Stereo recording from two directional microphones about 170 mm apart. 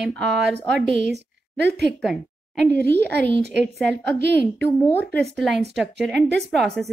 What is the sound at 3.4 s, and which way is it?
Speech, 90° right.